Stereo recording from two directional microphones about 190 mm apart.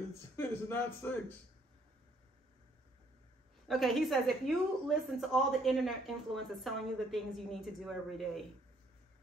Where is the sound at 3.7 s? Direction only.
Centre (ahead or behind).